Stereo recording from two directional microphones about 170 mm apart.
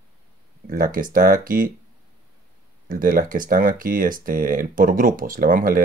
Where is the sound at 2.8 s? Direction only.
55° right (ahead or behind).